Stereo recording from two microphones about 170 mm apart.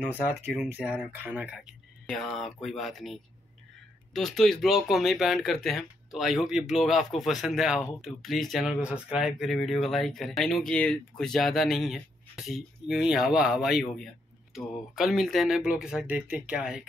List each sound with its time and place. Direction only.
0.0 s speech: 10° right (ahead or behind)
2.0 s speech: 5° left (ahead or behind)